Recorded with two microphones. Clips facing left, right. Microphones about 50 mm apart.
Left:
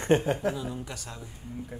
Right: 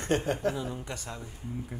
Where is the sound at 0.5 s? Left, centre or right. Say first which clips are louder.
Even; centre.